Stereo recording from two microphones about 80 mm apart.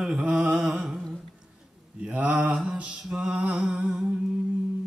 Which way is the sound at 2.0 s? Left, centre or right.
Centre.